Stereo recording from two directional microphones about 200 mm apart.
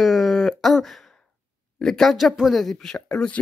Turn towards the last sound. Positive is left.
turn(degrees=5)  # may be behind; listen again after turning